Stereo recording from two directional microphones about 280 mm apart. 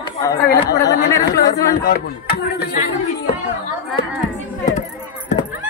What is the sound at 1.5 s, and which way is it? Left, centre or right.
Speech, left.